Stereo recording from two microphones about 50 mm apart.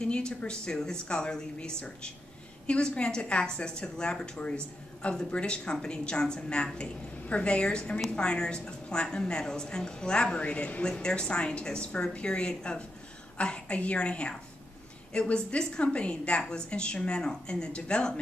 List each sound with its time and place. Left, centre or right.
0.0 s a woman's voice: centre